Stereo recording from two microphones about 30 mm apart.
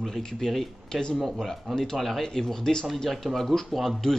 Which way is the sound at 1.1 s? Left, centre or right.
Centre.